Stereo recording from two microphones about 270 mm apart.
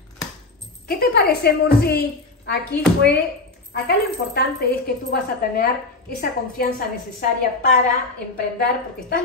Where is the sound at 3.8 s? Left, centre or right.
Left.